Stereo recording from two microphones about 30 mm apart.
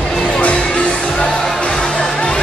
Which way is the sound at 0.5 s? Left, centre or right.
Left.